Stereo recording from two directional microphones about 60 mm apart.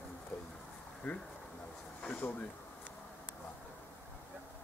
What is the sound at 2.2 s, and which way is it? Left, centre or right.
Speech, left.